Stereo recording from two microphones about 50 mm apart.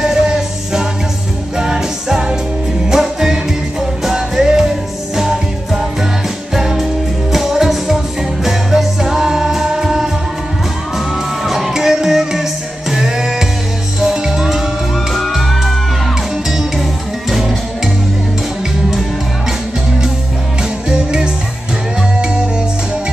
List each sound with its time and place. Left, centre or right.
0.0 s music: centre
11.4 s music: centre
15.1 s music: centre
20.9 s music: centre